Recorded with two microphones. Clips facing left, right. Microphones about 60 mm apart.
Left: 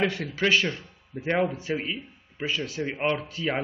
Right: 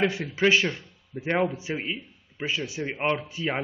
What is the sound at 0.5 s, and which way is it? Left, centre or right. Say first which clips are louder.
Speech: right 1 dB; centre.